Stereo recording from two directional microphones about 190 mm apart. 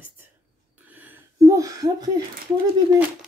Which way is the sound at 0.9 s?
15° right (ahead or behind).